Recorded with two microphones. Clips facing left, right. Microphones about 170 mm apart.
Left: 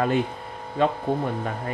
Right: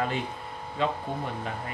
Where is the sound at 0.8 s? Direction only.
50° left (ahead or behind).